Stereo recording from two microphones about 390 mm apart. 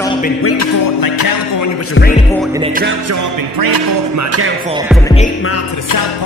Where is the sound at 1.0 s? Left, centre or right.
Left.